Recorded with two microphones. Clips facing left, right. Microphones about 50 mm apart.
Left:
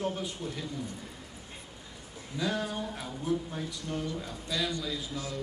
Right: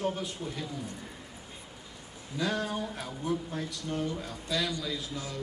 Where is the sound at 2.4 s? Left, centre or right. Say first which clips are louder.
Right 1 dB; centre.